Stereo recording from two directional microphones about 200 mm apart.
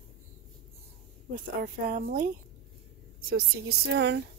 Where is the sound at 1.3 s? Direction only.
45° right (ahead or behind).